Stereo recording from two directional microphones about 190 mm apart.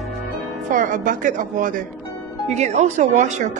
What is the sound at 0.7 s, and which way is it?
A woman's voice, 40° right (ahead or behind).